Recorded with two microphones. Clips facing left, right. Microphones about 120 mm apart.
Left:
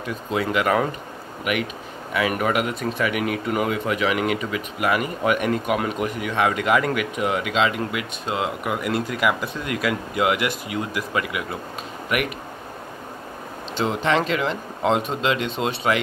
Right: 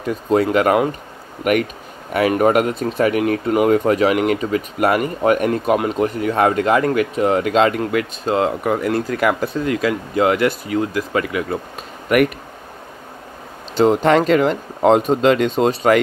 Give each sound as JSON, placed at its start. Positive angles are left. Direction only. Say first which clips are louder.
{"t": 0.0, "sound": "speech", "louder": "right 8 dB", "side_deg": -40}
{"t": 2.2, "sound": "speech", "louder": "right 8 dB", "side_deg": -35}
{"t": 13.7, "sound": "speech", "louder": "right 8 dB", "side_deg": -45}